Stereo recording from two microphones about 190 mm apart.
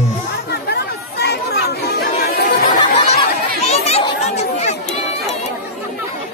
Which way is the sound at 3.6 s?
35° left (ahead or behind).